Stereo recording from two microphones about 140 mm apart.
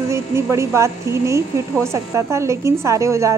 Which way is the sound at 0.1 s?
20° right (ahead or behind).